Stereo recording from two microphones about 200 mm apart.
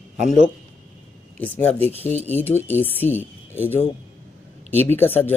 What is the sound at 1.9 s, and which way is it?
Speech, 35° left (ahead or behind).